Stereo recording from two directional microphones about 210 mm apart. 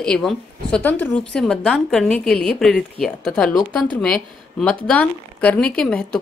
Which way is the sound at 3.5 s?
15° left (ahead or behind).